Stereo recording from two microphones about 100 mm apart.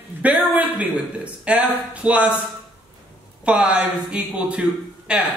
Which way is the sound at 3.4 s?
10° right (ahead or behind).